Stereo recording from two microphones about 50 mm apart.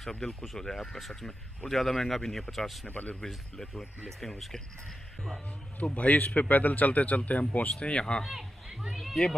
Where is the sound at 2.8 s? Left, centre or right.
Left.